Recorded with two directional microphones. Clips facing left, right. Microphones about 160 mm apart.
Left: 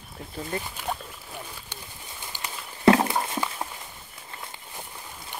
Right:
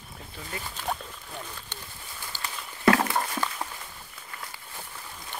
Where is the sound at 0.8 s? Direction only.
5° left (ahead or behind).